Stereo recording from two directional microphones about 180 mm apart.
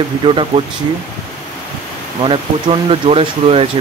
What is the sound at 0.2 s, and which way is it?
Speech, 30° right (ahead or behind).